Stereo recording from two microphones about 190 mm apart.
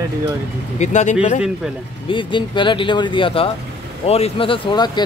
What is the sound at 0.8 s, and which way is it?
Speech, 40° left (ahead or behind).